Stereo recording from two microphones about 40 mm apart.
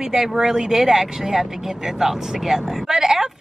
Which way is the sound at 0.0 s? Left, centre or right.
Centre.